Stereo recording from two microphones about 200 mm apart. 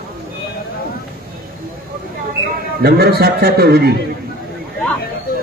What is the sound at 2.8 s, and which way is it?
A man's voice, 50° right (ahead or behind).